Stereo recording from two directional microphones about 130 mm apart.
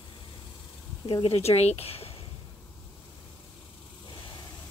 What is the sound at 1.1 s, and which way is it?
Speech, 45° left (ahead or behind).